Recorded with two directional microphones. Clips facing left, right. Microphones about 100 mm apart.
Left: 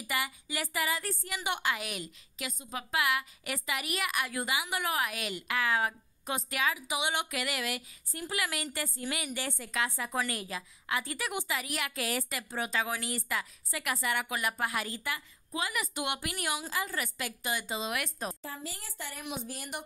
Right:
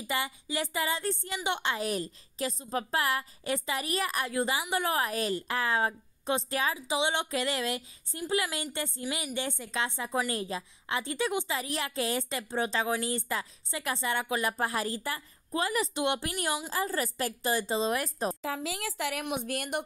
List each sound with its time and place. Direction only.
0.0 s a woman's voice: 25° right (ahead or behind)
16.7 s a woman's voice: 35° right (ahead or behind)
18.4 s speech: 90° right
19.2 s a woman's voice: 60° right (ahead or behind)